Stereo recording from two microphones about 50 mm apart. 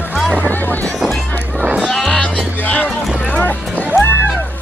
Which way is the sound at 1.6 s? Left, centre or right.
Right.